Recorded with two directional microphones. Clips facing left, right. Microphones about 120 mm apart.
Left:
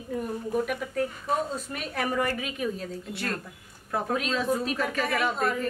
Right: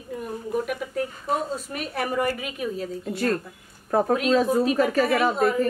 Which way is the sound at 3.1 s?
40° right (ahead or behind).